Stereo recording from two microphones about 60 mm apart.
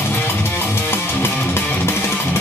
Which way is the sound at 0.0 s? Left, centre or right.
Left.